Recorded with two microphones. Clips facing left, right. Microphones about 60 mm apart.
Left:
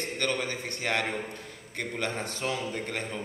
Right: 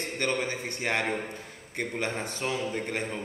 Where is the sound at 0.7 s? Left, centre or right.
Centre.